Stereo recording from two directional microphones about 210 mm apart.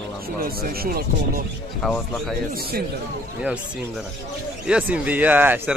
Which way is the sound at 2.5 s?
45° right (ahead or behind).